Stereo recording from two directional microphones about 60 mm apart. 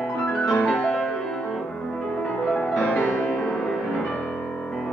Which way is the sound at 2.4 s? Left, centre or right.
Centre.